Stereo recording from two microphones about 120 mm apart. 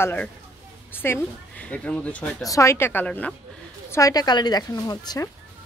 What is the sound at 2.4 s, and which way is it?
Speech, 25° left (ahead or behind).